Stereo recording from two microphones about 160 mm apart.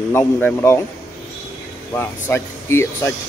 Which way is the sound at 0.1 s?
15° left (ahead or behind).